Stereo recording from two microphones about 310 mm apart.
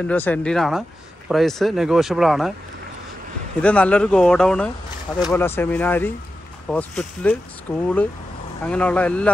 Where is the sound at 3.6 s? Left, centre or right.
Centre.